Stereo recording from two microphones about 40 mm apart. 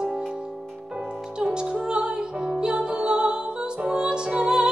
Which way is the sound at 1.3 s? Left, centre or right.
Right.